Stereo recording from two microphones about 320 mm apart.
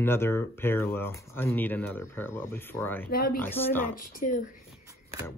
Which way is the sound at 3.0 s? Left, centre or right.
Left.